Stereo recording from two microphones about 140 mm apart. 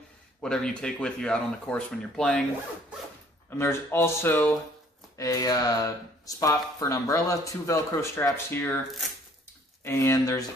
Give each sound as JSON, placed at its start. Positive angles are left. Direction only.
{"t": 0.4, "sound": "speech", "side_deg": 5}
{"t": 3.4, "sound": "speech", "side_deg": 15}
{"t": 9.8, "sound": "speech", "side_deg": 15}